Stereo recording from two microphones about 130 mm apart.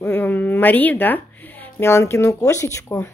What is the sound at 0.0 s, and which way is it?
Speech, 15° left (ahead or behind).